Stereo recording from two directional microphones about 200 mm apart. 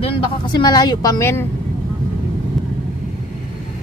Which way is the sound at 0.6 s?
20° left (ahead or behind).